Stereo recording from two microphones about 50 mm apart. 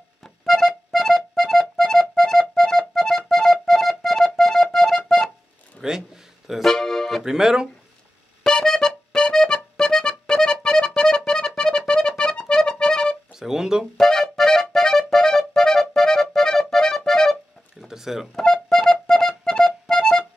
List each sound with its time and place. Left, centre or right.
0.2 s music: centre
5.8 s a sound: centre
6.6 s music: centre
7.2 s speech: centre
8.5 s music: centre
13.4 s speech: centre
13.9 s music: centre
17.7 s a sound: centre
18.3 s music: centre